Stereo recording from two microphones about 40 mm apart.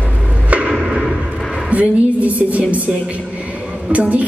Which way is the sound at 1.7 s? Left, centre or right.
Right.